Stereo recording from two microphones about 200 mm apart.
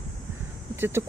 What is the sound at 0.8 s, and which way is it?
Speech, 15° right (ahead or behind).